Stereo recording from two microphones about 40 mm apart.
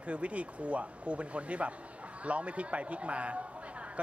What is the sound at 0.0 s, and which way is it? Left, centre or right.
A man's voice, right.